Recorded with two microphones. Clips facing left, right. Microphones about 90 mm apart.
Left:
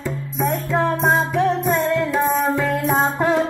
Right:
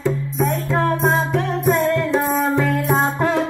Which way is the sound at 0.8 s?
Centre (ahead or behind).